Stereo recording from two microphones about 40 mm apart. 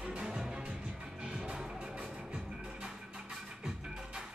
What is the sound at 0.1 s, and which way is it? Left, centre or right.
Music, right.